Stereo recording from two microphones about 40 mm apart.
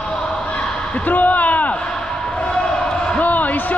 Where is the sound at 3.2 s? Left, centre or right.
Left.